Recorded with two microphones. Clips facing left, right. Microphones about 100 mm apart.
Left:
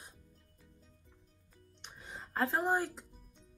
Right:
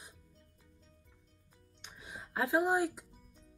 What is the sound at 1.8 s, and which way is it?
Music, 5° right (ahead or behind).